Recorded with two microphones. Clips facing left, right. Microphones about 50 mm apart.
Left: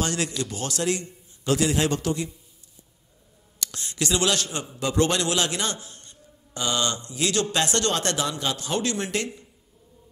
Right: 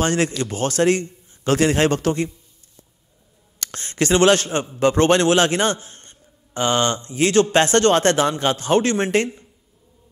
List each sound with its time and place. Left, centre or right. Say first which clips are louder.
0.0 s a man's voice: right 7 dB; right
3.5 s a man's voice: right 7 dB; right